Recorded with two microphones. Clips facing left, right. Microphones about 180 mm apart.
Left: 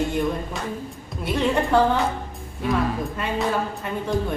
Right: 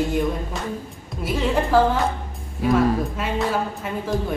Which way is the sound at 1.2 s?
Centre (ahead or behind).